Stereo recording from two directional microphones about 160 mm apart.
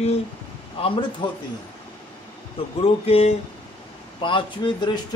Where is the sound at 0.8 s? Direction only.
30° left (ahead or behind).